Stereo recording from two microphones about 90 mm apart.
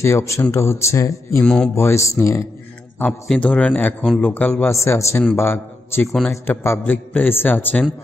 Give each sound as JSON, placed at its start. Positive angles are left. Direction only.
{"t": 0.0, "sound": "speech", "side_deg": 30}
{"t": 1.4, "sound": "speech", "side_deg": 10}
{"t": 1.8, "sound": "speech", "side_deg": 25}
{"t": 3.3, "sound": "a man's voice", "side_deg": 15}
{"t": 4.7, "sound": "a man's voice", "side_deg": 30}